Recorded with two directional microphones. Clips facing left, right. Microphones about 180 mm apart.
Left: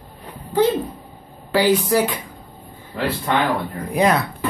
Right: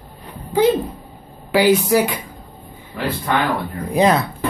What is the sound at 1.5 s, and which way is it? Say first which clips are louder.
Speech: right 2 dB; 10° right (ahead or behind).